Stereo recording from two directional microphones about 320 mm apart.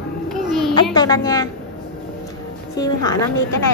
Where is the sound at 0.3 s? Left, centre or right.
Centre.